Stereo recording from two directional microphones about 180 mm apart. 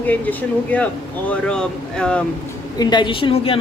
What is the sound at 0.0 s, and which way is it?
Speech, 10° left (ahead or behind).